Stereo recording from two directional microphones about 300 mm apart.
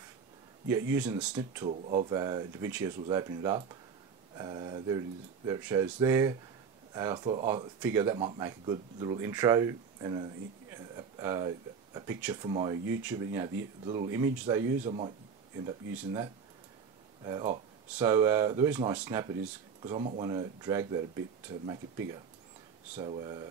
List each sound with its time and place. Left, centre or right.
0.7 s speech: centre
1.7 s speech: right
14.9 s speech: right
15.6 s speech: centre
22.9 s speech: centre